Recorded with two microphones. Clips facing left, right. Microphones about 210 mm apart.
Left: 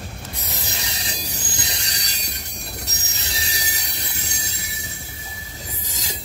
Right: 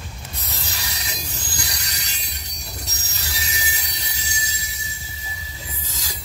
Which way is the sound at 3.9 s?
55° left (ahead or behind).